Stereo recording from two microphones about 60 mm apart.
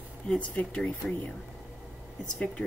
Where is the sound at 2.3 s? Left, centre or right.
Left.